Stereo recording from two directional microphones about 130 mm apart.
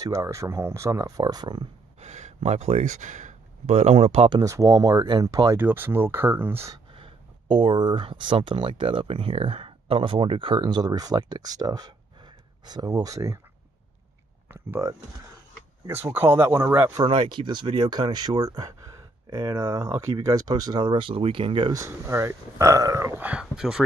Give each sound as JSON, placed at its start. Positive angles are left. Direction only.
{"t": 0.0, "sound": "speech", "side_deg": -25}
{"t": 2.0, "sound": "speech", "side_deg": -60}
{"t": 4.3, "sound": "speech", "side_deg": -25}
{"t": 5.6, "sound": "speech", "side_deg": -15}
{"t": 6.9, "sound": "speech", "side_deg": -40}
{"t": 14.5, "sound": "speech", "side_deg": -15}
{"t": 15.9, "sound": "speech", "side_deg": -15}
{"t": 16.9, "sound": "speech", "side_deg": -40}
{"t": 21.7, "sound": "speech", "side_deg": -20}